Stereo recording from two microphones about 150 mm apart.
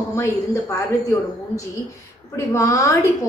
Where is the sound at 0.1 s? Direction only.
20° left (ahead or behind).